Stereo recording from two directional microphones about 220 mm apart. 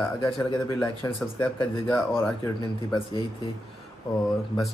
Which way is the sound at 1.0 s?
15° left (ahead or behind).